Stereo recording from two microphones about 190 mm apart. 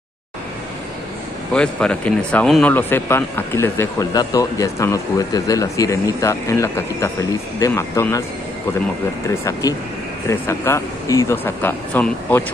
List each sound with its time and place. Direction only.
1.5 s speech: 5° left (ahead or behind)
9.3 s speech: 15° left (ahead or behind)